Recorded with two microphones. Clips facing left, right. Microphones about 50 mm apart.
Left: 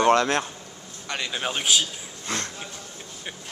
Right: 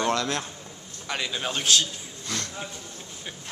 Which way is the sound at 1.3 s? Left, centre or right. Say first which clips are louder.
Left 1 dB; centre.